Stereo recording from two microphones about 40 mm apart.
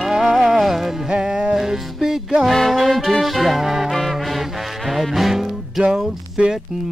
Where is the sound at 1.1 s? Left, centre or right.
Centre.